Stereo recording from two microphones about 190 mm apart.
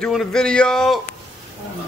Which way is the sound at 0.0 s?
Centre (ahead or behind).